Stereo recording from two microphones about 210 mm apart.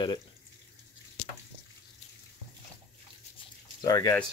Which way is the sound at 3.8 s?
15° left (ahead or behind).